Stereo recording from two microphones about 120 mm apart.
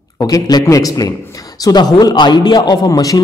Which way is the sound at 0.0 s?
30° left (ahead or behind).